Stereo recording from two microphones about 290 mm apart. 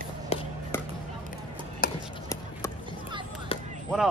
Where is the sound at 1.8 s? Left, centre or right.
Left.